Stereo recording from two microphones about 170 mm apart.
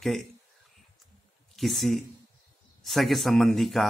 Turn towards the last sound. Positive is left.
turn(degrees=0)  # may be behind; listen again after turning